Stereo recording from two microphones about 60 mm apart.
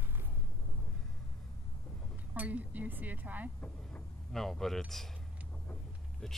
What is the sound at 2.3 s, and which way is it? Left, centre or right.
Speech, right.